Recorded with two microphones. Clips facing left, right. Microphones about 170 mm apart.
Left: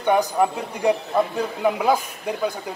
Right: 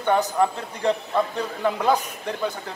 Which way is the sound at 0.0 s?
10° left (ahead or behind).